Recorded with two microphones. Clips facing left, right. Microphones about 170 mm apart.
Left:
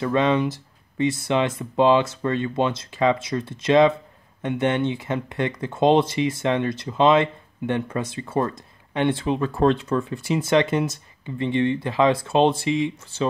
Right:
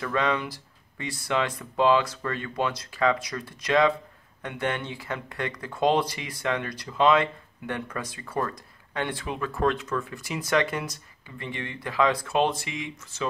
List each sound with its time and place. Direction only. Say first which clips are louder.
0.0 s speech: left 7 dB; 25° left (ahead or behind)